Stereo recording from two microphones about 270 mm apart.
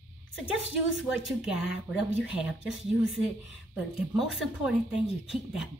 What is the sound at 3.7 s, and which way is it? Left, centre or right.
Speech, centre.